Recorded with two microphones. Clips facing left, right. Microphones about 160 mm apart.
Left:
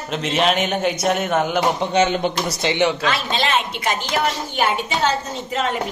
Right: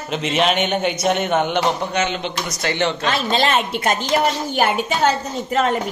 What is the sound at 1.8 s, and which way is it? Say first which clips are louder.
Speech: left 4 dB; 30° left (ahead or behind).